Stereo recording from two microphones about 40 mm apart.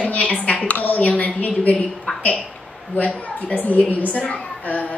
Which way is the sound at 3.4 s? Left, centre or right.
Left.